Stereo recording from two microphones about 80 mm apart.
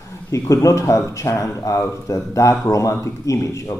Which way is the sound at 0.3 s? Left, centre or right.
Left.